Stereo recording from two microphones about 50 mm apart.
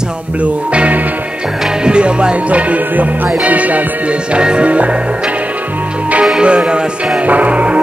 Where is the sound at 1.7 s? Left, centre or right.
Centre.